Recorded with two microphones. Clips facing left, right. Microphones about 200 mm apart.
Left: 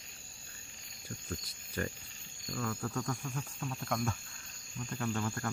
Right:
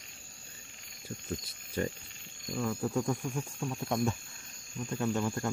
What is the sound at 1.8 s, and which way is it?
Speech, 25° right (ahead or behind).